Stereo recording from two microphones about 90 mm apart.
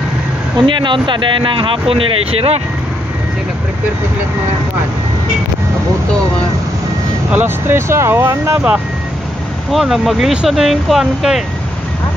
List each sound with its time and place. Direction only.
0.7 s speech: 65° right (ahead or behind); by 2.5 s 90° right
7.2 s speech: 20° right (ahead or behind)
8.5 s speech: 15° right (ahead or behind)
9.7 s speech: centre (ahead or behind)